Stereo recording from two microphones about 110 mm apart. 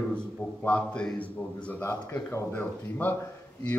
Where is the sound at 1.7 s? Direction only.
20° left (ahead or behind).